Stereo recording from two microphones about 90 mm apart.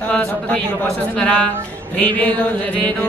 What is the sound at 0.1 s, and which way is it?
A man's voice, 15° left (ahead or behind).